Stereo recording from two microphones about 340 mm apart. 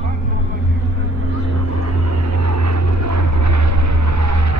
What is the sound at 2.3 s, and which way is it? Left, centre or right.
Vehicle, right.